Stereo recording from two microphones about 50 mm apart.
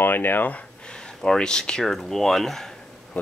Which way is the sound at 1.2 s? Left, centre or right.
Centre.